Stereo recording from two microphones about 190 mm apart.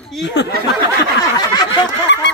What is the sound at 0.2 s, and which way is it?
Speech, 65° left (ahead or behind).